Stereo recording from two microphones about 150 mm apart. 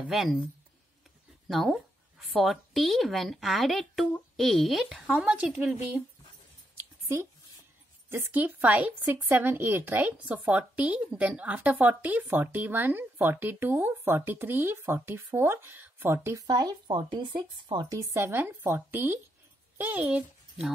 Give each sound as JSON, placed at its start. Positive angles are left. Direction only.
{"t": 0.0, "sound": "a woman's voice", "side_deg": 0}
{"t": 1.5, "sound": "a woman's voice", "side_deg": 0}
{"t": 8.1, "sound": "speech", "side_deg": -15}
{"t": 17.9, "sound": "a child's voice", "side_deg": -15}